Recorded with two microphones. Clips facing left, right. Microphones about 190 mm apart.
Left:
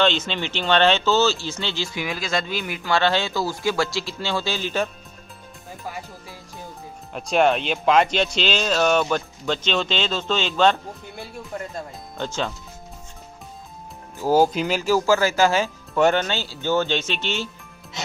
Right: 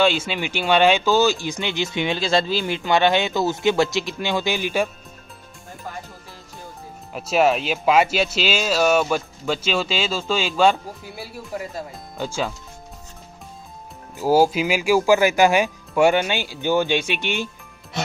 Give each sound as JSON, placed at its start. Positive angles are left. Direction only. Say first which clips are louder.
{"t": 0.0, "sound": "speech", "louder": "right 2 dB", "side_deg": -10}
{"t": 7.2, "sound": "speech", "louder": "right 1 dB", "side_deg": -5}
{"t": 14.1, "sound": "speech", "louder": "right 1 dB", "side_deg": -10}